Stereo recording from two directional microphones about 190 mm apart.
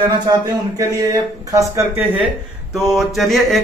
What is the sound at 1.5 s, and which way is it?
Speech, 15° right (ahead or behind).